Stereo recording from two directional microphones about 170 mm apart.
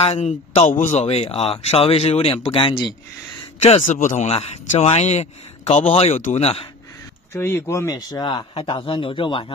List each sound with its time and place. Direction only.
0.0 s a man's voice: 40° left (ahead or behind)
3.6 s a man's voice: 45° left (ahead or behind)
7.3 s speech: 15° left (ahead or behind)